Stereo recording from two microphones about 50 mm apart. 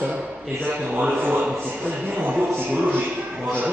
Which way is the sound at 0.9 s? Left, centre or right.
Right.